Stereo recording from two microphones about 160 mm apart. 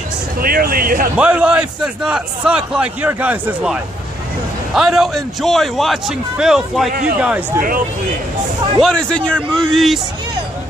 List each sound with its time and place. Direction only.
0.4 s speech: 65° right (ahead or behind)
1.1 s a man's voice: 5° right (ahead or behind)
7.6 s speech: 60° right (ahead or behind)
8.8 s a man's voice: 5° left (ahead or behind)